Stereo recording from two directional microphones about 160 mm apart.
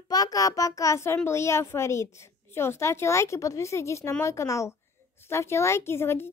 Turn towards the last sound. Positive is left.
turn(degrees=15)  # may be behind; listen again after turning